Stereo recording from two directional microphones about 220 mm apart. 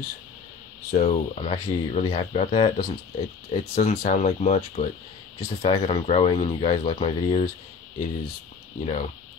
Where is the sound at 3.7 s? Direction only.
35° left (ahead or behind).